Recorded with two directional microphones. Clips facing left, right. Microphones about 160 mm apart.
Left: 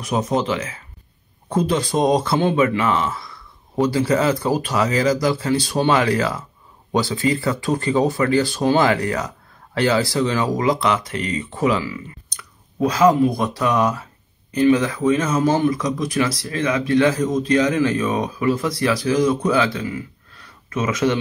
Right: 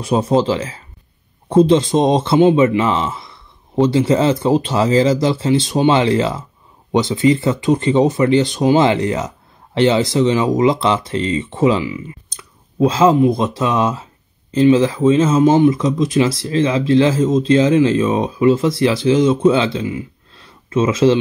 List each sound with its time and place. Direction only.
0.0 s speech: 30° right (ahead or behind)